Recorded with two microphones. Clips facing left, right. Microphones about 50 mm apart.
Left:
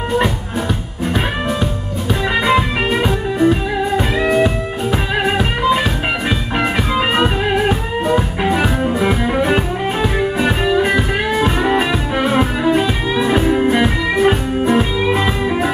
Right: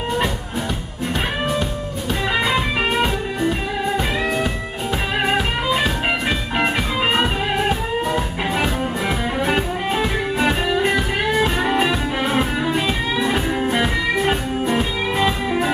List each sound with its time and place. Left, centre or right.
2.5 s music: centre
8.5 s music: centre